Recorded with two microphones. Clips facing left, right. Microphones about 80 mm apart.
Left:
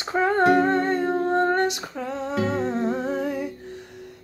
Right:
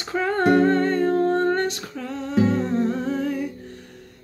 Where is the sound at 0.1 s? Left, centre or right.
Left.